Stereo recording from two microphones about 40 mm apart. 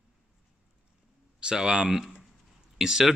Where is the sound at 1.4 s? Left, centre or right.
Right.